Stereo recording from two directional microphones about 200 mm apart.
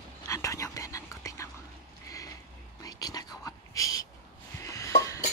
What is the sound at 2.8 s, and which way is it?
Whispering, 20° left (ahead or behind).